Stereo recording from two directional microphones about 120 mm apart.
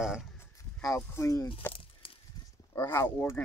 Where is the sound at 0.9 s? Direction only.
25° left (ahead or behind).